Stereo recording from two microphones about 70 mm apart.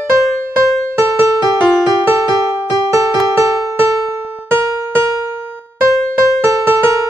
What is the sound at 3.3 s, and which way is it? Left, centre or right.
Music, right.